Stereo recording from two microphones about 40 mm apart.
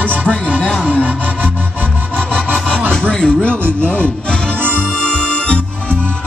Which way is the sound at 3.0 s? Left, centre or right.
Left.